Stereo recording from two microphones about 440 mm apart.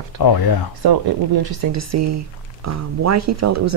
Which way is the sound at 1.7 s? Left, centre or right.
Right.